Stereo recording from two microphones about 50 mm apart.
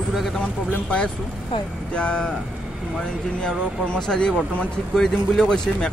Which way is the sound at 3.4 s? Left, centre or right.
Centre.